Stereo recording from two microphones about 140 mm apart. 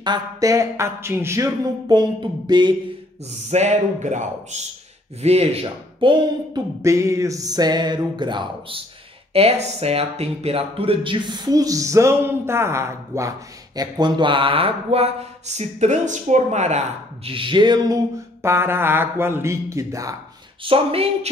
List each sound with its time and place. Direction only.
0.0 s speech: 30° right (ahead or behind)
3.4 s speech: 55° right (ahead or behind)
5.2 s speech: 50° right (ahead or behind)
6.8 s speech: 20° right (ahead or behind)
13.7 s speech: 30° right (ahead or behind)
20.6 s speech: 40° right (ahead or behind)